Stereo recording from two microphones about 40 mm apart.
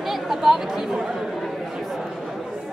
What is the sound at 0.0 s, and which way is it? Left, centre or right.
Speech, centre.